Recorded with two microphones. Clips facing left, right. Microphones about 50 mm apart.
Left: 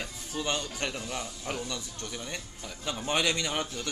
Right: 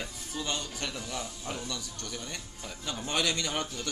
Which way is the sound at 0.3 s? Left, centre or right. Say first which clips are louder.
Left 4 dB; left.